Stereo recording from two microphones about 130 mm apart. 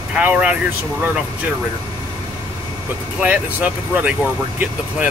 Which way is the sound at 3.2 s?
10° right (ahead or behind).